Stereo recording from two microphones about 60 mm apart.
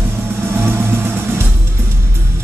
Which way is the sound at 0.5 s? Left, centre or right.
Right.